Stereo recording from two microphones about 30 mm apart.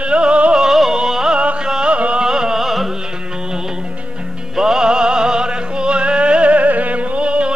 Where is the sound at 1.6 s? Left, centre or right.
Right.